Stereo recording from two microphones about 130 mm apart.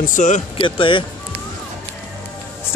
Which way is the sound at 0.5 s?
40° left (ahead or behind).